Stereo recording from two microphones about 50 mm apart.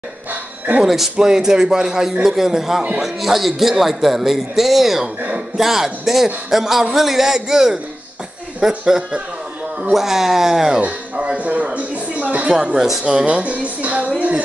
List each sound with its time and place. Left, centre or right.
0.3 s dog: right
0.8 s a man's voice: centre
10.8 s speech: right